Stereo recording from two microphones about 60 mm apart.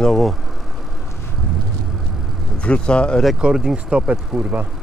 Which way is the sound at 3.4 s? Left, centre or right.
Centre.